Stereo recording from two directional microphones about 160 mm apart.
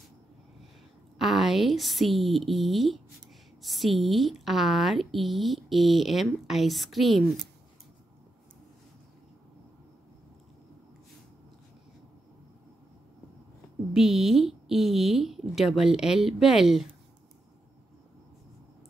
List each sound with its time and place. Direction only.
1.1 s a woman's voice: centre (ahead or behind)
13.9 s a woman's voice: centre (ahead or behind)